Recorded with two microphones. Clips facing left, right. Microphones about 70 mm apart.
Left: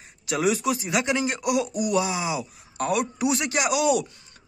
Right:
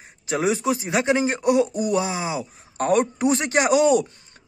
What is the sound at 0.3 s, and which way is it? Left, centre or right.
A man's voice, right.